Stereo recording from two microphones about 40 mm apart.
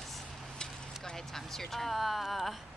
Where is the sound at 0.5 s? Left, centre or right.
Centre.